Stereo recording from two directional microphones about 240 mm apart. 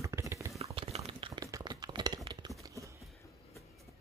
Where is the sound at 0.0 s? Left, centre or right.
Centre.